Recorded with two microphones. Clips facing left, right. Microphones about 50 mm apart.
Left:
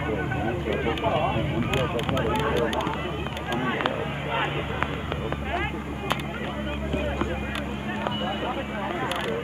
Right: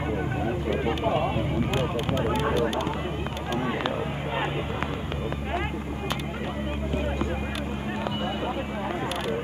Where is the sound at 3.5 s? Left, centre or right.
Left.